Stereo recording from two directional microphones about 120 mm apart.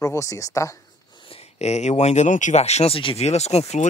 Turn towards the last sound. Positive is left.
turn(degrees=65)  # may be behind; listen again after turning